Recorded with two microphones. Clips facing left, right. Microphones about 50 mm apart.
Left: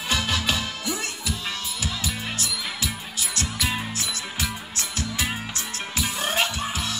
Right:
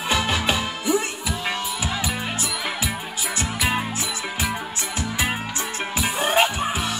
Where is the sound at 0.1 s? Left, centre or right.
Right.